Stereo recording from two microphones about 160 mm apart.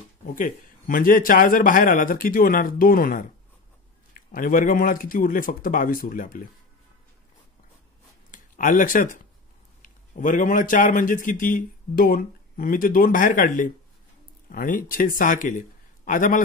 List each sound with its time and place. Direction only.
0.2 s a man's voice: 60° left (ahead or behind)
8.3 s a man's voice: 55° left (ahead or behind)